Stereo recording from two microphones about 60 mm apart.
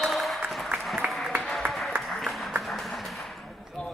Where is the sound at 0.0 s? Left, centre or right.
Centre.